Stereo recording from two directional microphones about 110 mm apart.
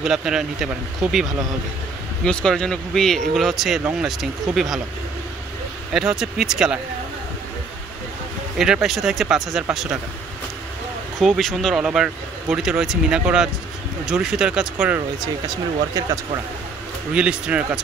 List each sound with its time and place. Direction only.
0.0 s speech: 5° right (ahead or behind)
2.2 s speech: 5° left (ahead or behind)
5.9 s speech: 5° right (ahead or behind)
8.5 s speech: 5° right (ahead or behind)
11.1 s speech: centre (ahead or behind)
15.1 s speech: 35° right (ahead or behind)
17.1 s speech: 10° right (ahead or behind)